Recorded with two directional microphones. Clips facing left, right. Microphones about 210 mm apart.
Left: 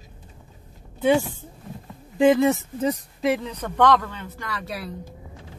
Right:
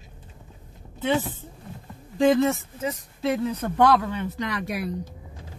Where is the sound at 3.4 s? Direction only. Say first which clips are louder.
Even; 10° right (ahead or behind).